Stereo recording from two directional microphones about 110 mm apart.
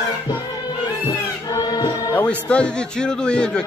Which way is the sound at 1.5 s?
40° left (ahead or behind).